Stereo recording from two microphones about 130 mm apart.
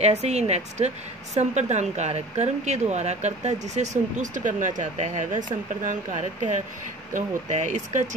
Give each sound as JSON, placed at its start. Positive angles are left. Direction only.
{"t": 0.0, "sound": "a woman's voice", "side_deg": -55}